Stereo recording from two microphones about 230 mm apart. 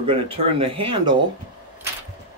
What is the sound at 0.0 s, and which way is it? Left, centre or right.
Speech, right.